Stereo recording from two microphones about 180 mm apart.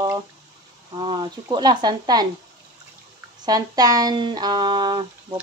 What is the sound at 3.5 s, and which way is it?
A woman's voice, 20° right (ahead or behind).